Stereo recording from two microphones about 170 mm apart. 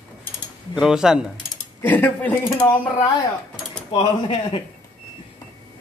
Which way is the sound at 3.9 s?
30° left (ahead or behind).